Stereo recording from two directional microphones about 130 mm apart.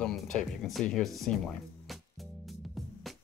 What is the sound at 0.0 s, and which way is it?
Speech, centre (ahead or behind).